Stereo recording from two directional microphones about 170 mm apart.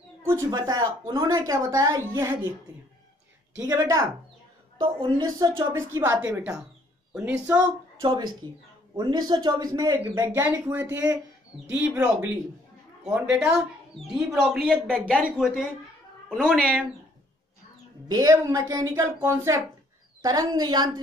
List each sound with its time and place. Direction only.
0.2 s speech: 15° right (ahead or behind)
3.6 s speech: 20° right (ahead or behind)
6.2 s speech: 10° right (ahead or behind)
8.9 s speech: 25° right (ahead or behind); by 16.8 s 5° left (ahead or behind)
18.0 s speech: 20° right (ahead or behind)